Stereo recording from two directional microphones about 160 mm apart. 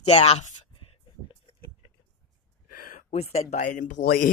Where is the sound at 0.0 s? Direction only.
40° left (ahead or behind).